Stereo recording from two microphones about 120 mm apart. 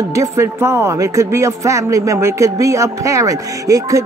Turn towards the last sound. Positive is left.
turn(degrees=-25)  # may be behind; listen again after turning